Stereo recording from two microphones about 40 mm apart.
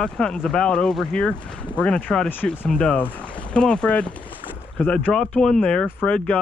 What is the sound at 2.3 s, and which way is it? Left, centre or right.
Speech, left.